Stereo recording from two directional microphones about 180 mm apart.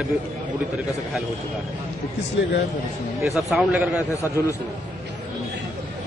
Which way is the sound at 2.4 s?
90° left.